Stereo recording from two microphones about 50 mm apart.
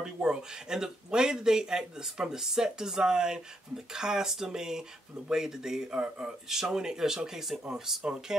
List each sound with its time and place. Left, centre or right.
0.0 s speech: centre